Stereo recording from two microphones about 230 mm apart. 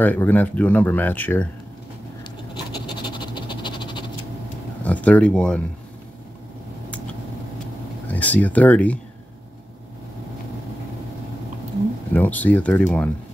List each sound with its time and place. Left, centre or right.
0.0 s speech: centre
2.5 s a sound: centre
4.8 s speech: centre
8.1 s speech: centre
12.1 s speech: centre